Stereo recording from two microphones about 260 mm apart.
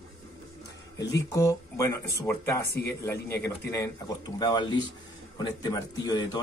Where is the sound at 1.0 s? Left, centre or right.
Centre.